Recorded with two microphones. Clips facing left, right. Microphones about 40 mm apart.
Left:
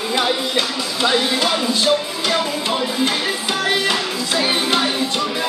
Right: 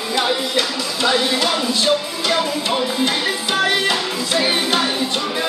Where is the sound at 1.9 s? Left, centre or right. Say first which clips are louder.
Left 1 dB; centre.